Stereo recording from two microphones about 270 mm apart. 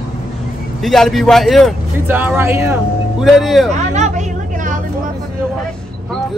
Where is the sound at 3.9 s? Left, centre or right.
Right.